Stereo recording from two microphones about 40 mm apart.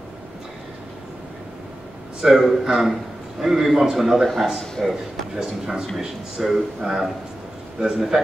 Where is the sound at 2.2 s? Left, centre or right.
Centre.